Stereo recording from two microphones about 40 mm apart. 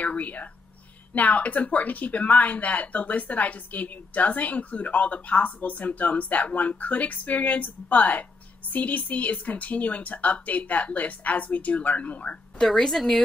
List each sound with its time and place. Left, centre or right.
0.0 s speech: left
12.7 s a woman's voice: centre